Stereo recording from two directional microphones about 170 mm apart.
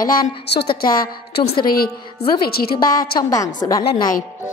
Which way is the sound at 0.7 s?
55° left (ahead or behind).